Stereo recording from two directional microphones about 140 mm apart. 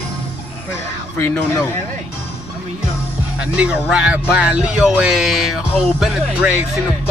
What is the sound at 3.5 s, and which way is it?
Speech, 5° right (ahead or behind).